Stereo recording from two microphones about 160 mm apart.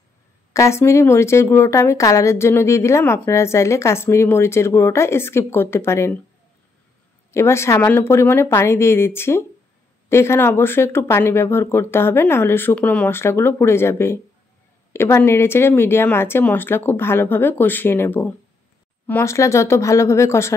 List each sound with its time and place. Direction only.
0.5 s a woman's voice: 20° left (ahead or behind)
7.2 s a woman's voice: 15° left (ahead or behind)